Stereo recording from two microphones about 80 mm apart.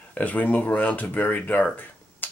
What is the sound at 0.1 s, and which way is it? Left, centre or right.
Speech, left.